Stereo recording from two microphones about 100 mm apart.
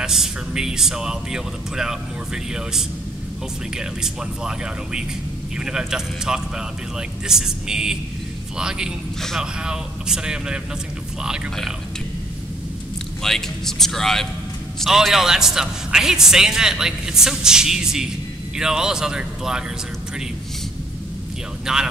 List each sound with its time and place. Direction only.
0.0 s a man's voice: 5° right (ahead or behind)
13.2 s a man's voice: 5° left (ahead or behind)
21.7 s a man's voice: 5° right (ahead or behind)